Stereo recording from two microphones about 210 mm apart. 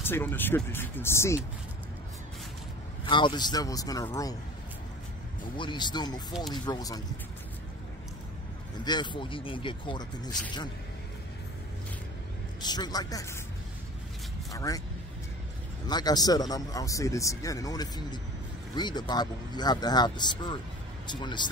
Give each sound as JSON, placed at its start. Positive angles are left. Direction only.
{"t": 0.0, "sound": "speech", "side_deg": 10}
{"t": 3.1, "sound": "speech", "side_deg": 20}
{"t": 5.6, "sound": "speech", "side_deg": 20}
{"t": 8.8, "sound": "speech", "side_deg": 20}
{"t": 12.6, "sound": "speech", "side_deg": 20}
{"t": 14.5, "sound": "speech", "side_deg": 15}
{"t": 15.9, "sound": "speech", "side_deg": 20}